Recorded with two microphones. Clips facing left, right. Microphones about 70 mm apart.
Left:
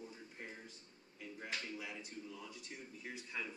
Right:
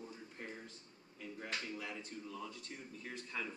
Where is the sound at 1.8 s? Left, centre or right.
Centre.